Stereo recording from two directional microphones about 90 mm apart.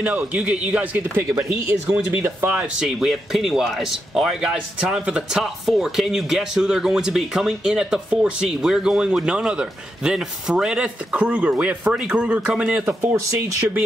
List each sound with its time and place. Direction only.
0.0 s a man's voice: 15° right (ahead or behind)
3.0 s a man's voice: centre (ahead or behind)
12.8 s speech: 30° right (ahead or behind)